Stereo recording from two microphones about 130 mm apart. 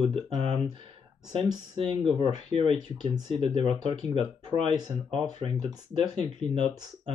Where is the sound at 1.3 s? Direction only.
40° right (ahead or behind).